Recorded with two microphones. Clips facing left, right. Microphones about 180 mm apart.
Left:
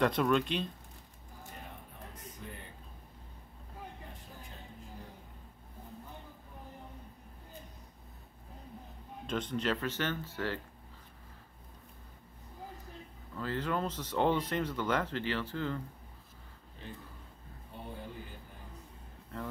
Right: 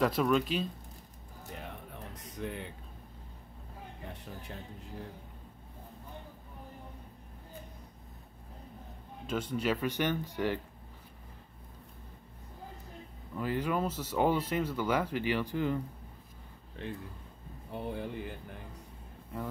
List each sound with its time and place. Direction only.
0.0 s speech: centre (ahead or behind)
2.3 s speech: 70° right (ahead or behind)
9.2 s speech: 5° right (ahead or behind)
13.4 s speech: 10° right (ahead or behind)
16.8 s a man's voice: 65° right (ahead or behind)
19.3 s speech: 10° right (ahead or behind)